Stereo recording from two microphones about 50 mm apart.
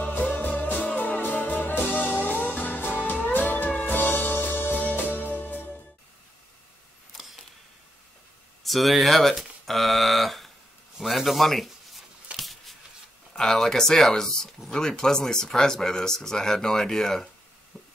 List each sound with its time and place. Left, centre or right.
0.1 s music: left
8.6 s speech: centre
12.4 s a sound: centre
13.3 s speech: centre